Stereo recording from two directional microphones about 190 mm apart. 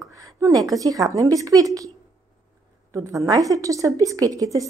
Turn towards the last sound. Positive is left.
turn(degrees=-20)  # may be behind; listen again after turning